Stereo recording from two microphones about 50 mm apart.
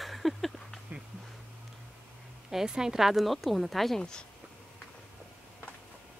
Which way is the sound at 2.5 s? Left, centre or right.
Centre.